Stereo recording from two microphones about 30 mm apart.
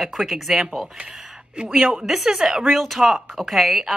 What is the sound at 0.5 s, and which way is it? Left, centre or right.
Speech, centre.